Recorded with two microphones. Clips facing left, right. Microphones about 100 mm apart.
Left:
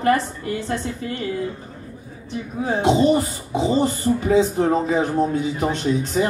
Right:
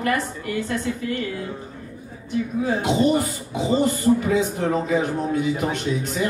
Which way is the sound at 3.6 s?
30° left (ahead or behind).